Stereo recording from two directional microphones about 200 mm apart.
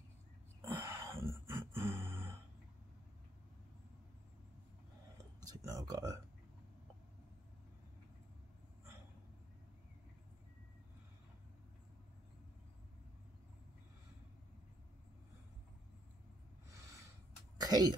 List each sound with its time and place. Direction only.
0.7 s roar: 15° right (ahead or behind)
5.4 s speech: 20° right (ahead or behind)
17.6 s speech: 20° right (ahead or behind)